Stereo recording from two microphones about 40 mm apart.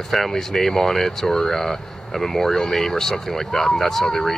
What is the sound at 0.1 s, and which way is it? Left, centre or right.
Speech, centre.